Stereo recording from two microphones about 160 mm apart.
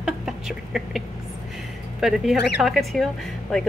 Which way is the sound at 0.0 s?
5° right (ahead or behind).